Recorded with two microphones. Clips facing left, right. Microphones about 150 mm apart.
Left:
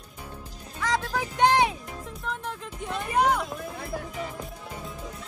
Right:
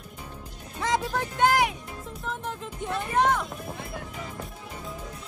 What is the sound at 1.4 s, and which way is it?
Speech, 25° left (ahead or behind).